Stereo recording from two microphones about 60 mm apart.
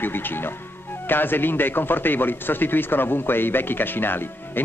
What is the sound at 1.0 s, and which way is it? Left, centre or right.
Speech, left.